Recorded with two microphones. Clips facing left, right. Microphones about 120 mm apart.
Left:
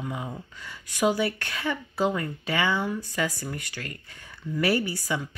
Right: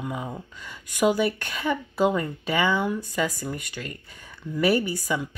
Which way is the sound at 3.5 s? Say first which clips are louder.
Right 3 dB; 15° right (ahead or behind).